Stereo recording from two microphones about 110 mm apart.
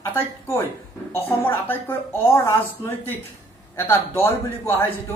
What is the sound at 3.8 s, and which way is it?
Speech, 20° left (ahead or behind).